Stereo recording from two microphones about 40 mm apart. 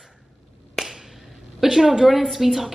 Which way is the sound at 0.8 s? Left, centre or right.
Centre.